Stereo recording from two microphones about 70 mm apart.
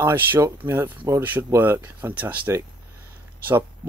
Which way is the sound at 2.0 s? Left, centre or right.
Right.